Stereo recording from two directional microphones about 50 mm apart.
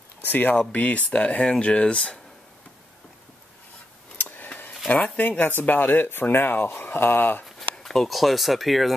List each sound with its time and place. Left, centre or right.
0.2 s speech: left
4.2 s a sound: left
4.8 s speech: left
7.8 s speech: centre